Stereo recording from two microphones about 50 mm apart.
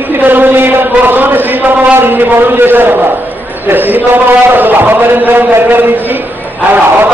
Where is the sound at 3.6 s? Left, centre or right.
Right.